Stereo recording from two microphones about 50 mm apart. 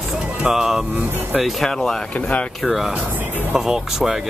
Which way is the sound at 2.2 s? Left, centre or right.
Left.